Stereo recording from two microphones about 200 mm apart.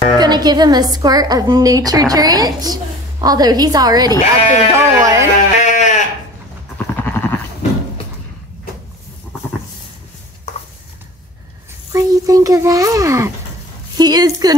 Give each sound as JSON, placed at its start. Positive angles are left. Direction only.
{"t": 0.2, "sound": "a woman's voice", "side_deg": -20}
{"t": 5.6, "sound": "sheep", "side_deg": 35}
{"t": 6.8, "sound": "horse", "side_deg": 10}
{"t": 11.9, "sound": "a sound", "side_deg": -15}
{"t": 13.9, "sound": "a woman's voice", "side_deg": -20}